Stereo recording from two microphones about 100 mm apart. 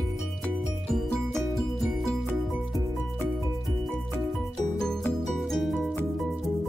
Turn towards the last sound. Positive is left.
turn(degrees=0)  # may be behind; listen again after turning